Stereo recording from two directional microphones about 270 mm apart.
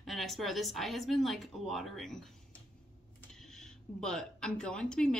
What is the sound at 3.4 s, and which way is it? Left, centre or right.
Speech, centre.